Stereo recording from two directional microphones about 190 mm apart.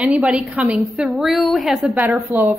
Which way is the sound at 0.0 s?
5° right (ahead or behind).